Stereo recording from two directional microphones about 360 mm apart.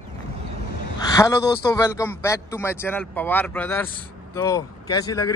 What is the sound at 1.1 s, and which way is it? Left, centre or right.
A man's voice, centre.